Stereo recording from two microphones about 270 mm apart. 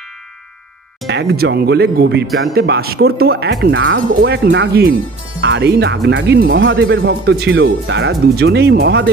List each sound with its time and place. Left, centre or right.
1.0 s speech: right